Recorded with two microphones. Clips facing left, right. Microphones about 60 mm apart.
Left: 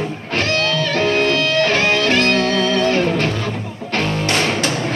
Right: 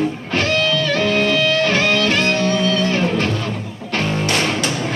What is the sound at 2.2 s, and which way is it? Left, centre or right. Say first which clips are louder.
Music: left 1 dB; left.